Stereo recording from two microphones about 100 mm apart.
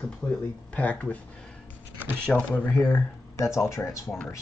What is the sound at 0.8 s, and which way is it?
Speech, 15° left (ahead or behind).